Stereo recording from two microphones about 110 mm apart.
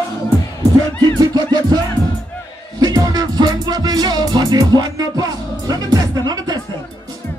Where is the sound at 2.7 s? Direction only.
35° right (ahead or behind).